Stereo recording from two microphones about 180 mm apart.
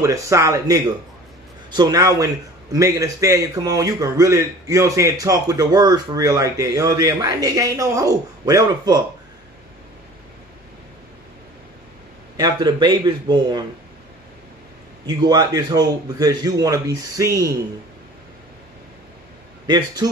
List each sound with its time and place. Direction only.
0.0 s a man's voice: 15° right (ahead or behind)
12.4 s a man's voice: 25° right (ahead or behind)
15.0 s a man's voice: 20° right (ahead or behind)
19.6 s a man's voice: 20° right (ahead or behind)